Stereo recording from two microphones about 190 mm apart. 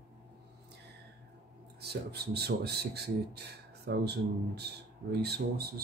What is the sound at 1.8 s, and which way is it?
Speech, 60° right (ahead or behind).